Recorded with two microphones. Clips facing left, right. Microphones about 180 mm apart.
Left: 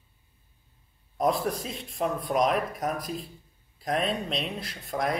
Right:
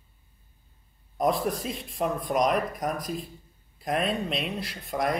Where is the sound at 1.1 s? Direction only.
Centre (ahead or behind).